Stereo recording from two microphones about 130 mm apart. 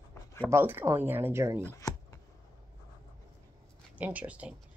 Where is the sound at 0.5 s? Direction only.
15° right (ahead or behind).